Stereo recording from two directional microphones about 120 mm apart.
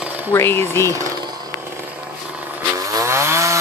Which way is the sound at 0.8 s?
25° right (ahead or behind).